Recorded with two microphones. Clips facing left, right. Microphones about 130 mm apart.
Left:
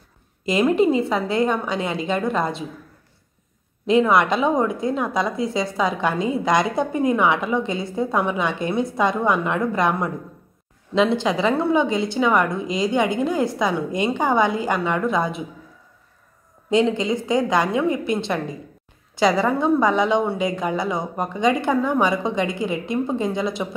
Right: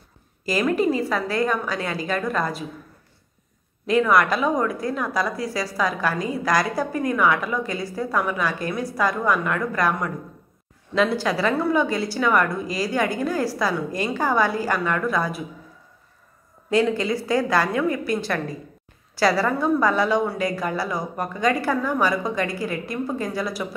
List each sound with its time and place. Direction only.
0.5 s a woman's voice: 25° left (ahead or behind)
3.8 s a woman's voice: 25° left (ahead or behind)
16.7 s a woman's voice: 20° left (ahead or behind)